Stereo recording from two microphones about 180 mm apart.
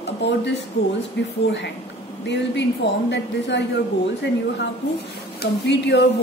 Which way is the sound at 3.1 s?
75° left (ahead or behind).